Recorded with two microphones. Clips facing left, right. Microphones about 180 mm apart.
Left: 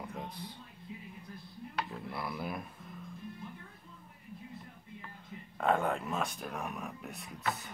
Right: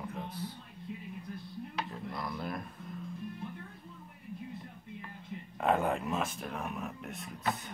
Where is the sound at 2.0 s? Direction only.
5° left (ahead or behind).